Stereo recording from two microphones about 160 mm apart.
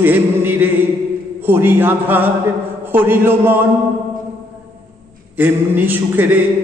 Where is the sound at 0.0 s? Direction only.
15° right (ahead or behind).